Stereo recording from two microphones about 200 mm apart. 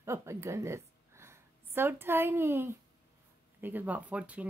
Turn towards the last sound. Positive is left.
turn(degrees=-5)  # may be behind; listen again after turning